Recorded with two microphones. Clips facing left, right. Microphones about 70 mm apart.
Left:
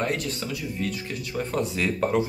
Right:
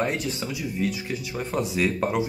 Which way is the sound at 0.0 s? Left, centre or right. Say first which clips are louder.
Right 1 dB; centre.